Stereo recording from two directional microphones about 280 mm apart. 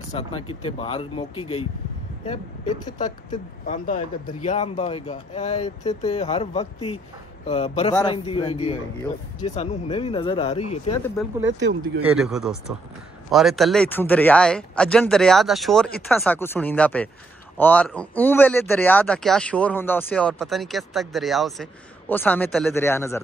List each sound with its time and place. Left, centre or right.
0.1 s speech: left
3.6 s speech: left
11.4 s speech: right
12.2 s speech: centre